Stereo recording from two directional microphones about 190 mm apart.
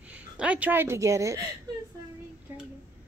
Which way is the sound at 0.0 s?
5° right (ahead or behind).